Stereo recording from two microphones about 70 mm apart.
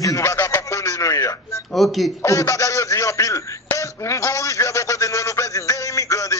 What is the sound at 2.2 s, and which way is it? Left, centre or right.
Speech, left.